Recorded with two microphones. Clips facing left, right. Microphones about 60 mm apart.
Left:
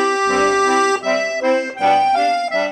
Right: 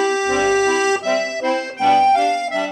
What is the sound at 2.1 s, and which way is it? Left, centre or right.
Music, left.